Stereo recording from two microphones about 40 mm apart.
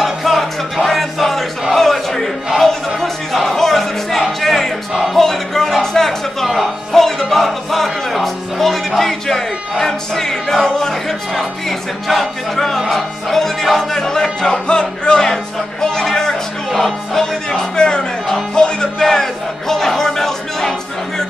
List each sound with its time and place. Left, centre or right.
0.0 s crowd: centre
5.1 s music: centre
12.1 s speech: centre
12.9 s music: centre
17.5 s music: centre